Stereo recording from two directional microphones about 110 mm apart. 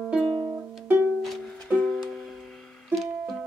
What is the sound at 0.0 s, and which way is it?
Music, 5° left (ahead or behind).